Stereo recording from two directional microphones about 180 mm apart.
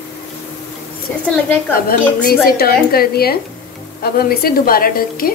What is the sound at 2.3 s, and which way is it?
A woman's voice, 55° left (ahead or behind).